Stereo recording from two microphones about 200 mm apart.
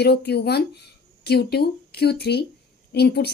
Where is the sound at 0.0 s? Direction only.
55° left (ahead or behind).